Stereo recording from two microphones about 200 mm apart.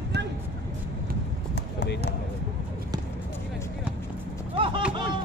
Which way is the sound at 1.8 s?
60° left (ahead or behind).